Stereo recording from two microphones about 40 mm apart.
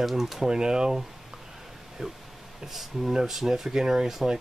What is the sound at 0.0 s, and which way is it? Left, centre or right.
Speech, centre.